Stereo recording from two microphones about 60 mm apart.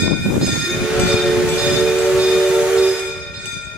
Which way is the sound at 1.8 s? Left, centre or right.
Centre.